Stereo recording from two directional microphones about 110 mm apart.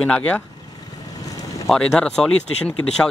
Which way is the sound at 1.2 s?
30° left (ahead or behind).